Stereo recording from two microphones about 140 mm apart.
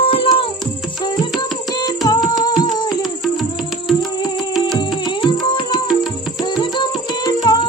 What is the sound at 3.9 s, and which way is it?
Music, 30° left (ahead or behind).